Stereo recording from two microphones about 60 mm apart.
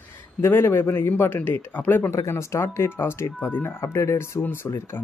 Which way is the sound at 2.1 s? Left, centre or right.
Left.